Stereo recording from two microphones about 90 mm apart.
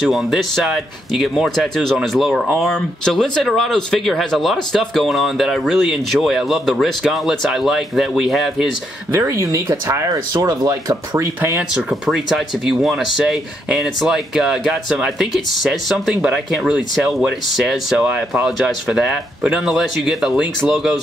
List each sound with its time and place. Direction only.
0.0 s speech: centre (ahead or behind)
9.1 s speech: 30° right (ahead or behind)
11.9 s speech: centre (ahead or behind)